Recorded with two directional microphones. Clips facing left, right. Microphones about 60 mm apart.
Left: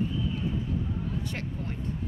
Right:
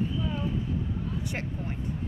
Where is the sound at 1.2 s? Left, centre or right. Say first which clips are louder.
Right 1 dB; centre.